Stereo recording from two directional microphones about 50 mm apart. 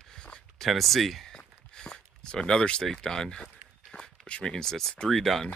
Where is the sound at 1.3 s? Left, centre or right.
Centre.